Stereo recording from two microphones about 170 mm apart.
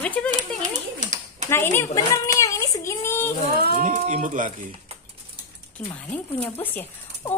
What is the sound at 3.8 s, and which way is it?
Speech, 45° right (ahead or behind).